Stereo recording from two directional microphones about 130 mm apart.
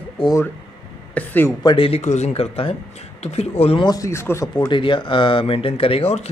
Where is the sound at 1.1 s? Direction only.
15° left (ahead or behind).